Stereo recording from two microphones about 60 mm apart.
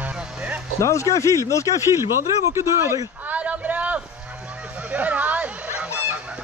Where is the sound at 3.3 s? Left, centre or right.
Right.